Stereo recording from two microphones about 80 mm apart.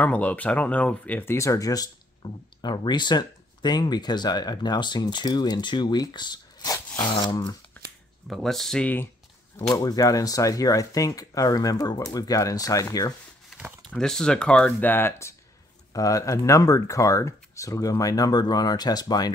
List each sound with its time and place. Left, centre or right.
0.0 s speech: centre
1.2 s speech: left
2.2 s speech: left
8.3 s speech: centre
8.8 s speech: left
9.8 s speech: left
13.8 s speech: centre
14.8 s speech: left
15.9 s speech: left